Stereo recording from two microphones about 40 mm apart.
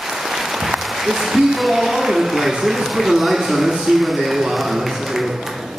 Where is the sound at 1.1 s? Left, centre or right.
Centre.